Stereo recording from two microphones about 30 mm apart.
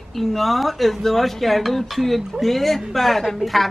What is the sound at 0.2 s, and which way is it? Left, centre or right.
A woman's voice, centre.